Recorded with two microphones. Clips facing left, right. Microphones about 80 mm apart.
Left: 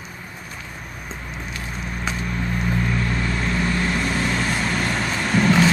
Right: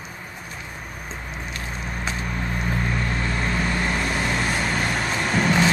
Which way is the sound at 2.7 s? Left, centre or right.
Centre.